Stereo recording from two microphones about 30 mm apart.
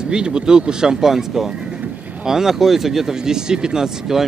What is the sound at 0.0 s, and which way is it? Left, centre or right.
Speech, right.